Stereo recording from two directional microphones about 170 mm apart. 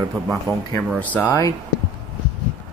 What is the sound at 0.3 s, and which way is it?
Speech, centre (ahead or behind).